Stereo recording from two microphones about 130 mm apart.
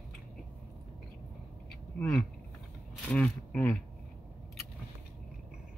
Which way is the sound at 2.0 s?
5° left (ahead or behind).